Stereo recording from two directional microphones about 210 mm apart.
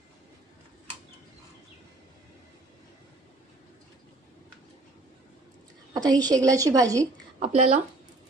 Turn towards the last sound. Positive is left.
turn(degrees=-35)  # may be behind; listen again after turning